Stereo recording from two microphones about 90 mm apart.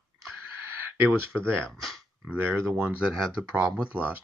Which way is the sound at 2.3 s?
25° right (ahead or behind).